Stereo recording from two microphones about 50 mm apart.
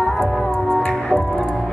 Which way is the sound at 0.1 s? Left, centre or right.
Centre.